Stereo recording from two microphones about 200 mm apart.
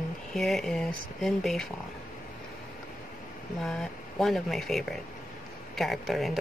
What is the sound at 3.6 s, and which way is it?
Speech, centre (ahead or behind).